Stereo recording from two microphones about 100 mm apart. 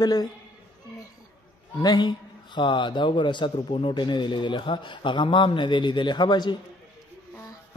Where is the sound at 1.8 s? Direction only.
45° left (ahead or behind).